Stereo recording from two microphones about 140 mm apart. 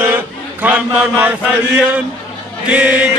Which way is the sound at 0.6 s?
10° right (ahead or behind).